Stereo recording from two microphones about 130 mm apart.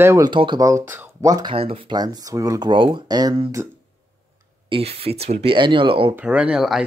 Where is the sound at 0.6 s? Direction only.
25° right (ahead or behind).